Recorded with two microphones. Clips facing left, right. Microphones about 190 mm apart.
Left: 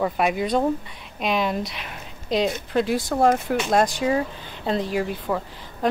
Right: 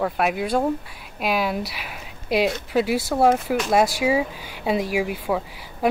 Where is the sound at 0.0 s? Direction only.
Centre (ahead or behind).